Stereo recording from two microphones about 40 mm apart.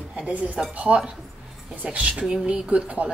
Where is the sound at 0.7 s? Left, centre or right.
Right.